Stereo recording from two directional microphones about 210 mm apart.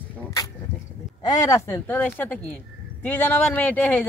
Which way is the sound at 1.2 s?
15° left (ahead or behind).